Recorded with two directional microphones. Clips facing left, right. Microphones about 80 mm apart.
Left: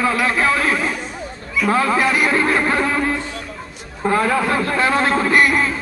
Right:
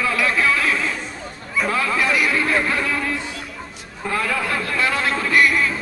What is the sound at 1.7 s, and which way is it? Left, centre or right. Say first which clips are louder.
A man's voice: left 5 dB; left.